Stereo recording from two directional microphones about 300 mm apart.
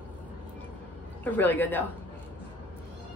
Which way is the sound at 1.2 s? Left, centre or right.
Centre.